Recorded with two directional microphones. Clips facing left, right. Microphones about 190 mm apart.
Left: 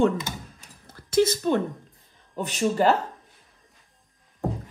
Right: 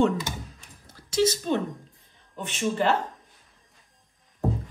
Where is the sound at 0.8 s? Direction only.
55° left (ahead or behind).